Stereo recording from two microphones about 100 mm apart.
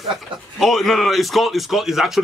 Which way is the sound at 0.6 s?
Centre (ahead or behind).